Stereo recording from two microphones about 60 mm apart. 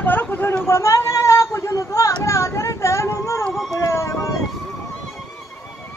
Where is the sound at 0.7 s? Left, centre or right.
Left.